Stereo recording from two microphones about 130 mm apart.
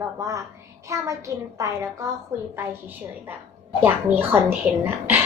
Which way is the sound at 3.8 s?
15° right (ahead or behind).